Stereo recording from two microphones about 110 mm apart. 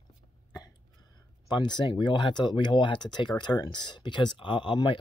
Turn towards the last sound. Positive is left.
turn(degrees=50)  # may be behind; listen again after turning